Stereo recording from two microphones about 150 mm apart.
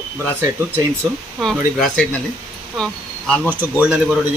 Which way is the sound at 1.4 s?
Centre (ahead or behind).